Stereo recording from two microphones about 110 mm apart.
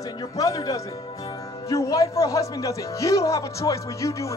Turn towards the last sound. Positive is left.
turn(degrees=30)  # may be behind; listen again after turning